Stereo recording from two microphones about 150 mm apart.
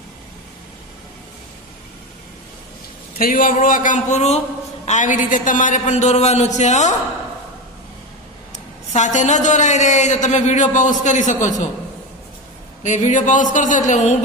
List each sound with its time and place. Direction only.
3.2 s a man's voice: 70° left (ahead or behind); by 7.0 s 50° left (ahead or behind)
8.9 s a man's voice: 50° left (ahead or behind)
12.8 s speech: 55° left (ahead or behind)